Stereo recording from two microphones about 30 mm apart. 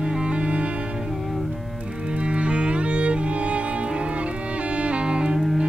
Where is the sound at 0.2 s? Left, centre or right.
Right.